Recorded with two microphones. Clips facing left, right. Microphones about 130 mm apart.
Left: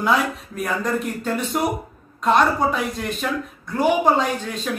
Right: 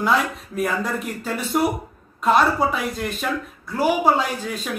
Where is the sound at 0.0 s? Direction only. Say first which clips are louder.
Even; centre (ahead or behind).